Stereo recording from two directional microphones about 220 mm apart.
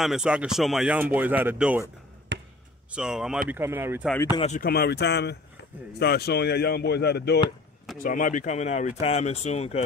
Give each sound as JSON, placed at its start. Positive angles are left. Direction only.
{"t": 0.0, "sound": "speech", "side_deg": 0}
{"t": 2.3, "sound": "basketball bounce", "side_deg": -55}
{"t": 2.9, "sound": "speech", "side_deg": -5}
{"t": 4.4, "sound": "speech", "side_deg": 35}
{"t": 8.0, "sound": "speech", "side_deg": 40}